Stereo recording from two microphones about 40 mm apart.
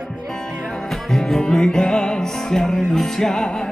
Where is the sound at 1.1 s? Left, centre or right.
Centre.